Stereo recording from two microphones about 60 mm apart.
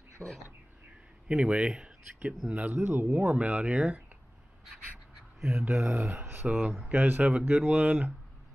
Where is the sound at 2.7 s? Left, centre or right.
Right.